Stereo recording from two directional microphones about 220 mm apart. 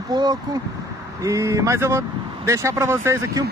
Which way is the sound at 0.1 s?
20° right (ahead or behind).